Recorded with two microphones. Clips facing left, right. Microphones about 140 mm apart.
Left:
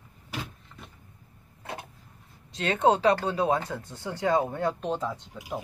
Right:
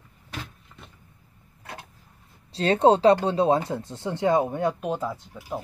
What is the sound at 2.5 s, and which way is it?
Speech, 30° right (ahead or behind).